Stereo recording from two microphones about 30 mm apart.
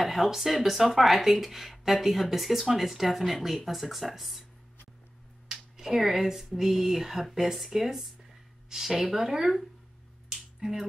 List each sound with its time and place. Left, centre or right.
0.0 s speech: centre
5.5 s speech: centre
10.3 s finger snapping: centre